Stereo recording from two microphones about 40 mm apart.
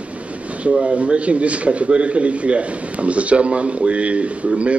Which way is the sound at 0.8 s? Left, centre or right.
Right.